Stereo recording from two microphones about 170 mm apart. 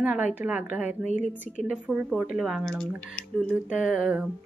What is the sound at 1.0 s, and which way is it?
Speech, 45° left (ahead or behind).